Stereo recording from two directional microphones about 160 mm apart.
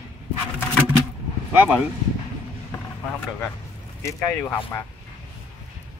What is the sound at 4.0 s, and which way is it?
Speech, 15° left (ahead or behind).